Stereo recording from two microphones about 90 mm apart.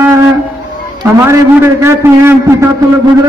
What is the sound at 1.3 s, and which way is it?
A man's voice, 30° right (ahead or behind).